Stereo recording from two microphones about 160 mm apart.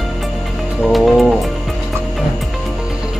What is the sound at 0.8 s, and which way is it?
Speech, centre (ahead or behind).